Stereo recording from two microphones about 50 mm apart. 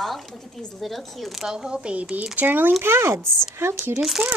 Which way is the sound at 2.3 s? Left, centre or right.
Right.